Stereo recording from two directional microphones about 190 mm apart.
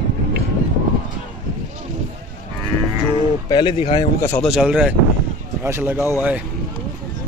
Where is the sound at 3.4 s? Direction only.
25° left (ahead or behind).